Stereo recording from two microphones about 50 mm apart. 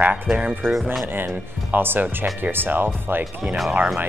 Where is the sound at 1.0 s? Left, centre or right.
Right.